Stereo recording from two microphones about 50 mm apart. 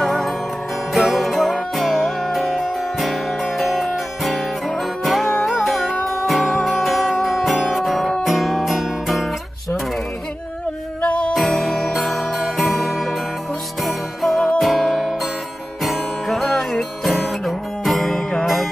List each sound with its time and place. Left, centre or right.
0.0 s music: centre
11.0 s music: left
11.3 s music: centre
17.5 s music: centre